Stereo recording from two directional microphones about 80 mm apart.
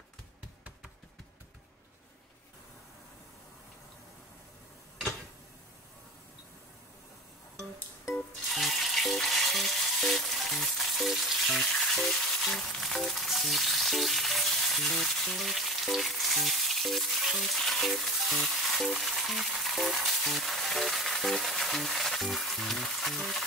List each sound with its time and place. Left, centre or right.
8.5 s frying: centre